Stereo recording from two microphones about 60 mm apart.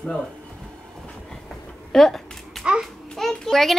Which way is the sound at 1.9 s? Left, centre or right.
Centre.